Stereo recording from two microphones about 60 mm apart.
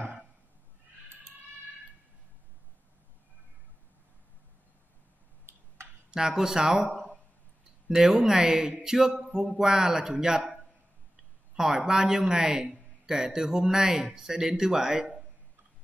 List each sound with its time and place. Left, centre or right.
6.0 s speech: centre
6.9 s a sound: centre
7.9 s speech: centre
11.5 s speech: centre